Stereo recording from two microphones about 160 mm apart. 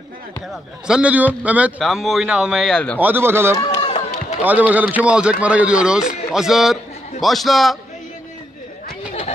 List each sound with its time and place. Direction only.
0.8 s a man's voice: 5° right (ahead or behind)
3.0 s a man's voice: 15° right (ahead or behind)
3.7 s run: 45° left (ahead or behind)
4.5 s a man's voice: 10° right (ahead or behind)